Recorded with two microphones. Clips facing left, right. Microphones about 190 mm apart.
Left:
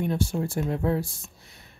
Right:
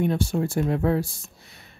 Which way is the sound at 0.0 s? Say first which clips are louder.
Right 3 dB; 75° right (ahead or behind).